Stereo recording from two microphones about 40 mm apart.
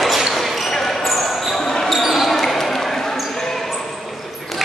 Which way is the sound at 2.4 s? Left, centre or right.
Centre.